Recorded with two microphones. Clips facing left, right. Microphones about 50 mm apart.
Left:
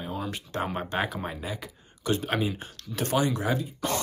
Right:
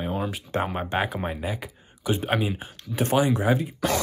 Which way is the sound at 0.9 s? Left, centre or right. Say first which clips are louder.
Right 5 dB; centre.